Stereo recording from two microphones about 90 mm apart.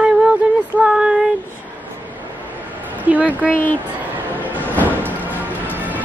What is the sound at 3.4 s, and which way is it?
Speech, 20° left (ahead or behind).